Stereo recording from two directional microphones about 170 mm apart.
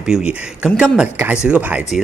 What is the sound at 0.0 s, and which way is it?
Speech, 5° right (ahead or behind).